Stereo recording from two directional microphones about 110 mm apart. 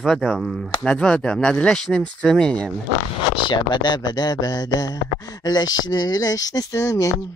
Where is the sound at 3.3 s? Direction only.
45° left (ahead or behind); by 7.1 s 30° left (ahead or behind).